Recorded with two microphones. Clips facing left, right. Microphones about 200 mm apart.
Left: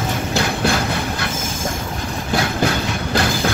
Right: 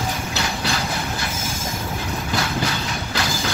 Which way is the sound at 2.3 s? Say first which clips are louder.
Left 6 dB; 55° left (ahead or behind).